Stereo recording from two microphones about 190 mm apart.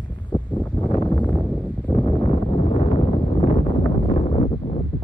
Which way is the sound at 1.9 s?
25° left (ahead or behind).